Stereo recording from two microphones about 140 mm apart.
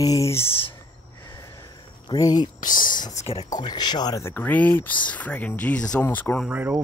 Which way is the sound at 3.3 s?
25° left (ahead or behind).